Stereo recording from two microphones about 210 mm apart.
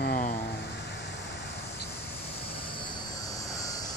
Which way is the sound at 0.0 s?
40° left (ahead or behind).